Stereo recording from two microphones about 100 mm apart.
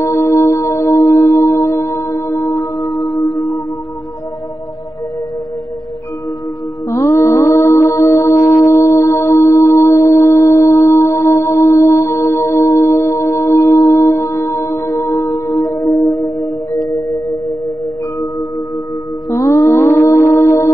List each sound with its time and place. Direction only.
0.0 s music: 30° left (ahead or behind)
6.9 s music: 35° left (ahead or behind)
19.3 s music: 30° left (ahead or behind)